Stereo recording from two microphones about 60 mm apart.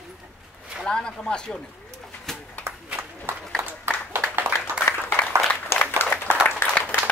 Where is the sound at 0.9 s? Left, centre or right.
Centre.